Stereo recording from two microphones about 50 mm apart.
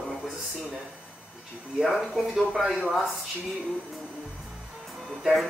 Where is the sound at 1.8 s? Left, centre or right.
Centre.